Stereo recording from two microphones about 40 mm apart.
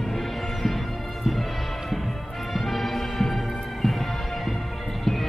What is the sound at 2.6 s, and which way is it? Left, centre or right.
Music, centre.